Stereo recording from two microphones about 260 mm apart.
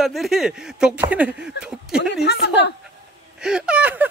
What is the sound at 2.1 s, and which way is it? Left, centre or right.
Speech, left.